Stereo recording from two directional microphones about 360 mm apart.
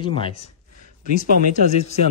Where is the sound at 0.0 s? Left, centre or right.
Centre.